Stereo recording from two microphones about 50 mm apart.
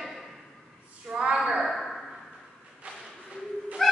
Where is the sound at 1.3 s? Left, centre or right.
Centre.